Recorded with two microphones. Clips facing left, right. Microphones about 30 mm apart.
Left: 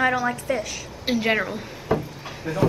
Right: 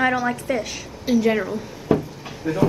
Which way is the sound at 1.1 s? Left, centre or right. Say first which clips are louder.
Right 3 dB; left.